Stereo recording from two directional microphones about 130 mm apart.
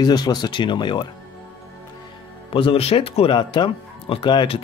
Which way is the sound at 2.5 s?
45° left (ahead or behind).